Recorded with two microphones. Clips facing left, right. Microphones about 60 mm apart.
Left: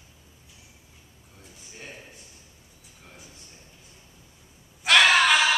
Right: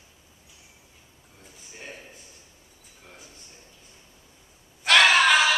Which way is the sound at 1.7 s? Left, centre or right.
Centre.